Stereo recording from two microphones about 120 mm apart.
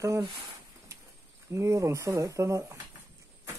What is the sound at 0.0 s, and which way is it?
Speech, 25° right (ahead or behind).